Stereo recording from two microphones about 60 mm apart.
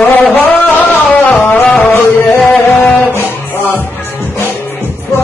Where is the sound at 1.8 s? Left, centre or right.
Left.